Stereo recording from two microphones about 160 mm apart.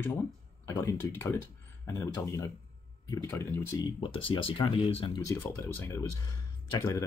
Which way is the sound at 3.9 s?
35° left (ahead or behind).